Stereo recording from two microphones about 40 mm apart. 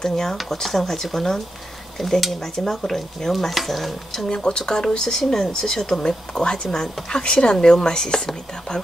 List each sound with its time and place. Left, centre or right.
0.0 s speech: centre
4.3 s speech: centre